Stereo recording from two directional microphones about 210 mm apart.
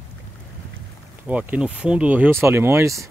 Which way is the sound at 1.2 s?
5° right (ahead or behind).